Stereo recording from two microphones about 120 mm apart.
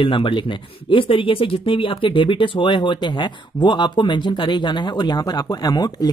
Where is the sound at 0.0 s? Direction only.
45° left (ahead or behind).